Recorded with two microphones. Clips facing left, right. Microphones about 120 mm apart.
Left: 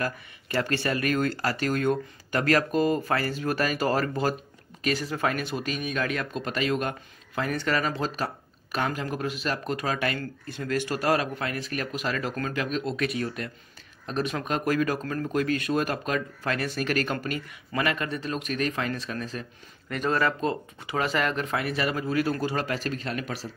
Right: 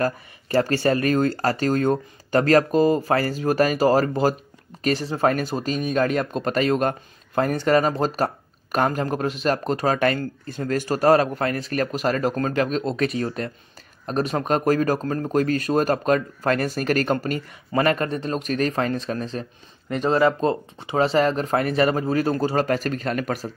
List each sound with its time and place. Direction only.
0.0 s speech: 40° right (ahead or behind)